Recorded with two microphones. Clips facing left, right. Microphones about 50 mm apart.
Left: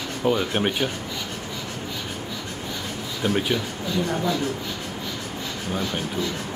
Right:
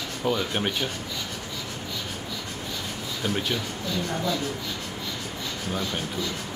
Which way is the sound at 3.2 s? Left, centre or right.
Centre.